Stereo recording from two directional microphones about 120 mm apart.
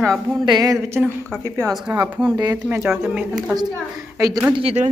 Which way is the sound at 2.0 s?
10° right (ahead or behind).